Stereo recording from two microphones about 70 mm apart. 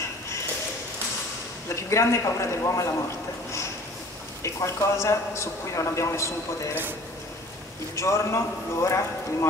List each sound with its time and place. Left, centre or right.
1.8 s a man's voice: left
4.4 s a man's voice: left
7.9 s a man's voice: left